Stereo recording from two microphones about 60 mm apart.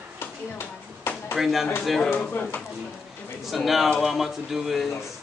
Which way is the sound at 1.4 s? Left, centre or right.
Centre.